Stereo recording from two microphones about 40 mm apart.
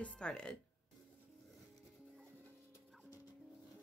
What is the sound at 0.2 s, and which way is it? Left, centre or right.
Speech, left.